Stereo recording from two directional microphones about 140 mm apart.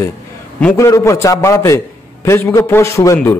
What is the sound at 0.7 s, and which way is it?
A man's voice, 20° left (ahead or behind).